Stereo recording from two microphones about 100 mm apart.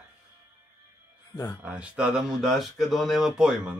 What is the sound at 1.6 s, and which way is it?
Speech, 15° right (ahead or behind).